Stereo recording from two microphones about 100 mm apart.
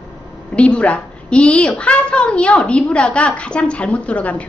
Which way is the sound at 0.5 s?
10° left (ahead or behind).